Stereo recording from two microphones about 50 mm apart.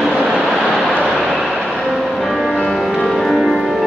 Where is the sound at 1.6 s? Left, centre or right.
Centre.